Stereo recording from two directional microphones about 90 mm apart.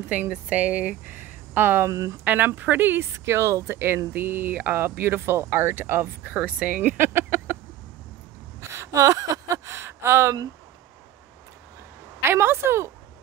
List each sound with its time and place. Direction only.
0.1 s speech: 15° right (ahead or behind); by 2.1 s 35° right (ahead or behind)
2.2 s speech: 20° right (ahead or behind)
8.5 s a sound: 30° right (ahead or behind)
9.7 s gasp: 30° right (ahead or behind)
12.2 s a woman's voice: 30° right (ahead or behind)